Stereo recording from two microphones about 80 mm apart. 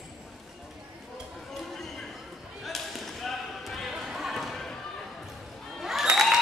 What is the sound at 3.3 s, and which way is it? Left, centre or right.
Basketball bounce, centre.